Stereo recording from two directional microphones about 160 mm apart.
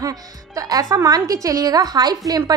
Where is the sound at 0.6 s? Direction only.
20° right (ahead or behind).